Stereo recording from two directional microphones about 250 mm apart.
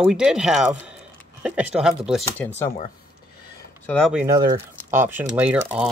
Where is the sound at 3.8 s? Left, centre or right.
Centre.